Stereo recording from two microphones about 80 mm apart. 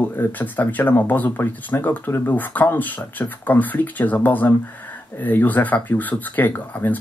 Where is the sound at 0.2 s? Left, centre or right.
Left.